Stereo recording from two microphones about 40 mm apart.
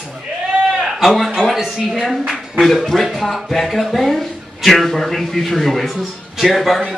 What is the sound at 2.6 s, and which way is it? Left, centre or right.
Speech, centre.